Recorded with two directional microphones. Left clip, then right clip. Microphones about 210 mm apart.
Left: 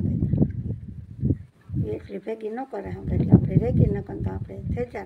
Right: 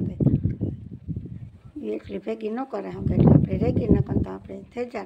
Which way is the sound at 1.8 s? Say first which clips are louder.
Right 1 dB; 10° right (ahead or behind).